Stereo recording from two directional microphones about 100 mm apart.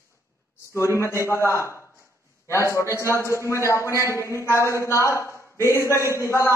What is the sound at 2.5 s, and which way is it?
A man's voice, 30° left (ahead or behind).